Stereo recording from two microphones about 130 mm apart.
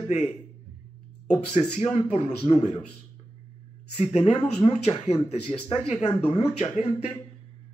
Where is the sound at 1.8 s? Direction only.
55° left (ahead or behind).